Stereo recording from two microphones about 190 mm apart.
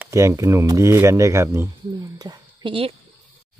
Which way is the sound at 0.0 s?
15° right (ahead or behind).